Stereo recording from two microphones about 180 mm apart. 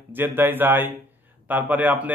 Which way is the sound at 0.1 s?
10° right (ahead or behind).